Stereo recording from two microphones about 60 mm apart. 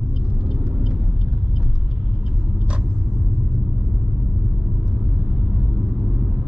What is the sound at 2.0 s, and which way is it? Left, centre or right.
Vehicle, centre.